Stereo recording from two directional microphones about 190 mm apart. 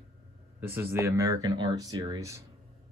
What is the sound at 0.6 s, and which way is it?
A man's voice, 10° right (ahead or behind).